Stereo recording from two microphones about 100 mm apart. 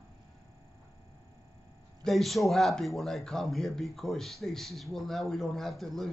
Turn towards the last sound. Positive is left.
turn(degrees=5)  # may be behind; listen again after turning